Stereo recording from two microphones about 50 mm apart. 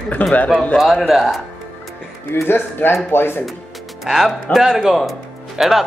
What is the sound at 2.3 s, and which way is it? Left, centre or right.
A man's voice, left.